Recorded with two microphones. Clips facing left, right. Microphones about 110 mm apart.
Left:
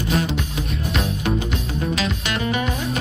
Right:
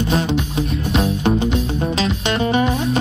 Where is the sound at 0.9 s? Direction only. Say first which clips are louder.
Right 5 dB; 30° right (ahead or behind).